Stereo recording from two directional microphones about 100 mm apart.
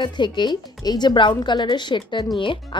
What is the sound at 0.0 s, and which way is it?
A woman's voice, 50° left (ahead or behind).